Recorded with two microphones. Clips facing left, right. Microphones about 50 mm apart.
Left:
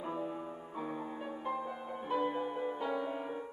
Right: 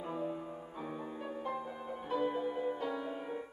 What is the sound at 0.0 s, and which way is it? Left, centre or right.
Music, centre.